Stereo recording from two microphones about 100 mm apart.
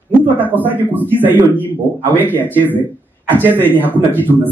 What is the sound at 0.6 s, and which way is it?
A man's voice, 20° right (ahead or behind).